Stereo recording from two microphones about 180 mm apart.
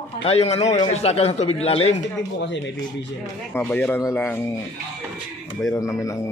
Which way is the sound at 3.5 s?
10° left (ahead or behind).